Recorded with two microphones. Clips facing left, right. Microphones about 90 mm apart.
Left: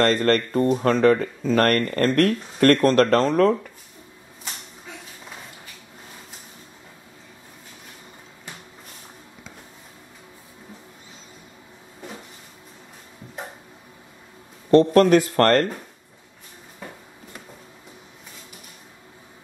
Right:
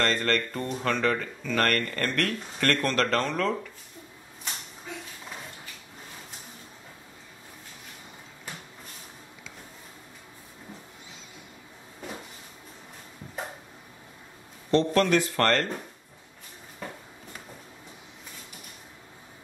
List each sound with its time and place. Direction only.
0.0 s speech: 45° left (ahead or behind)
14.7 s speech: 45° left (ahead or behind)